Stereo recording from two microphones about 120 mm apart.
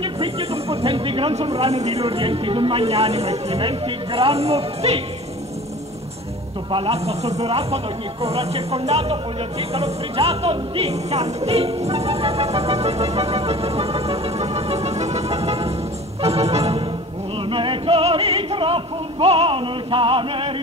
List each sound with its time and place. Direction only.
0.0 s speech: 50° right (ahead or behind)
6.7 s a man's voice: 50° right (ahead or behind)
16.2 s organ: 60° right (ahead or behind)
17.5 s music: 45° right (ahead or behind)